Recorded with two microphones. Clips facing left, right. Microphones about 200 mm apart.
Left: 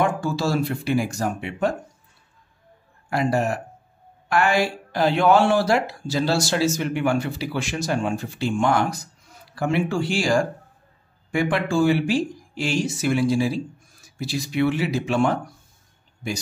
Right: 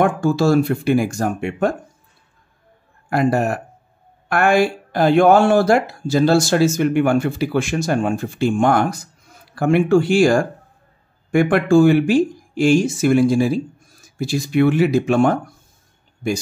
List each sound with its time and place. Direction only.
0.0 s speech: 50° right (ahead or behind)
3.1 s speech: 55° right (ahead or behind)